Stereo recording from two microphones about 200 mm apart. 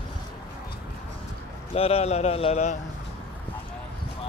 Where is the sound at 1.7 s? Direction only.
30° left (ahead or behind).